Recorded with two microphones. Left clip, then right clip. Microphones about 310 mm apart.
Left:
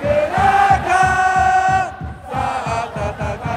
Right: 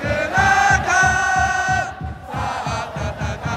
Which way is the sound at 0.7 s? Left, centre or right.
Centre.